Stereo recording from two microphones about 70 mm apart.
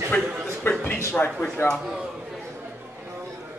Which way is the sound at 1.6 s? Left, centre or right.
Left.